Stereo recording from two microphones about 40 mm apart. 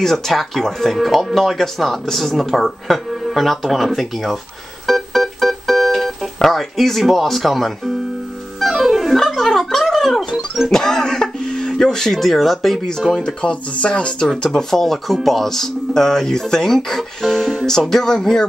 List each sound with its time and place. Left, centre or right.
0.0 s speech: centre
4.8 s keyboard: centre
6.4 s speech: centre
8.5 s music: centre
9.1 s gargling: centre
9.8 s a sound: centre
10.7 s cough: centre
11.8 s speech: centre
12.8 s speech: centre